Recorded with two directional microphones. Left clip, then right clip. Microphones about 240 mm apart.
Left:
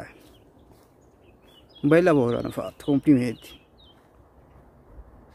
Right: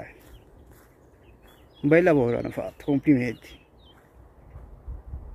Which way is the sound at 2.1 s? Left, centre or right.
Centre.